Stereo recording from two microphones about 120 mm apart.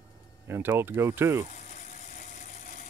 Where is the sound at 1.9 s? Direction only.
90° left.